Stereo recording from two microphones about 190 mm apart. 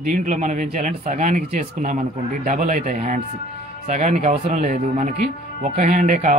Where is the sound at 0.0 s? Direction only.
40° right (ahead or behind).